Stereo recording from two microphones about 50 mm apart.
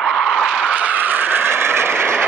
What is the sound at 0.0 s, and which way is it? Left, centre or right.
Vehicle, centre.